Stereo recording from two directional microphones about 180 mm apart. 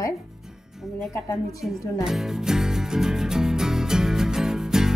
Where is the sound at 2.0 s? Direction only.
Centre (ahead or behind).